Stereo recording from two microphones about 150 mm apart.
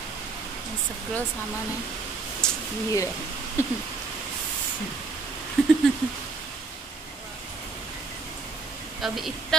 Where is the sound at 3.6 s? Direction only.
20° left (ahead or behind).